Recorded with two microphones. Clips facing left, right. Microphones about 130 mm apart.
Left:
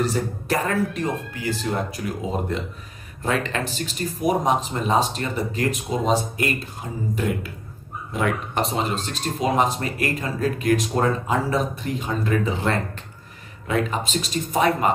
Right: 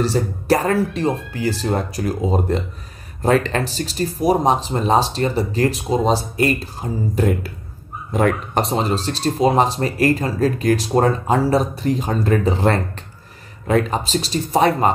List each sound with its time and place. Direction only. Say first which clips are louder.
0.0 s speech: right 4 dB; 35° right (ahead or behind)